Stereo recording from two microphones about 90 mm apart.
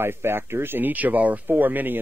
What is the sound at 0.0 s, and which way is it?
Speech, 25° right (ahead or behind).